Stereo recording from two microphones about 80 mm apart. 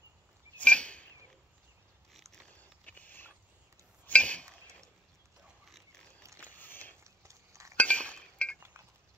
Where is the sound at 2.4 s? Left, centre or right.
Centre.